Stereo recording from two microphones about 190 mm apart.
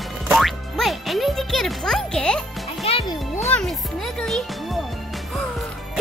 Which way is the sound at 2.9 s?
30° left (ahead or behind).